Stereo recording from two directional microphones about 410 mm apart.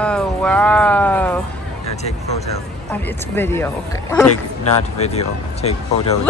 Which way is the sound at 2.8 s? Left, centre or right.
Centre.